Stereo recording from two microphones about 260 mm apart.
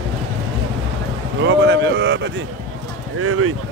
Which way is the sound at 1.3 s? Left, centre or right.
Right.